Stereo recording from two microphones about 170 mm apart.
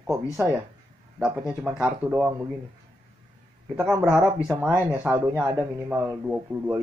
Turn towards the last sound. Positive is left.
turn(degrees=-10)  # may be behind; listen again after turning